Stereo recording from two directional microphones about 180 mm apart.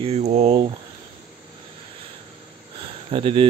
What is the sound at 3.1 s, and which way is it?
Speech, 30° right (ahead or behind).